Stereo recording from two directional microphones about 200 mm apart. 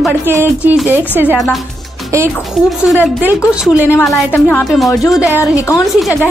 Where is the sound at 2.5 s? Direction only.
Centre (ahead or behind).